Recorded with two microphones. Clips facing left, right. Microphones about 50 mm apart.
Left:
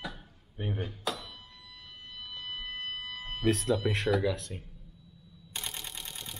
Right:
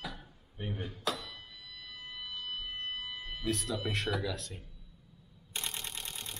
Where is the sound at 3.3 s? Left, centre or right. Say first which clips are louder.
Left 7 dB; left.